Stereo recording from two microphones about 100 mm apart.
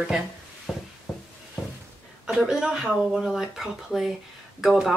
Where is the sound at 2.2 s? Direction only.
5° right (ahead or behind).